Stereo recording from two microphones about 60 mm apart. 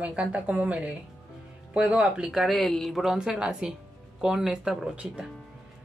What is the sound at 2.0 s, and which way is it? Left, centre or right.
Speech, centre.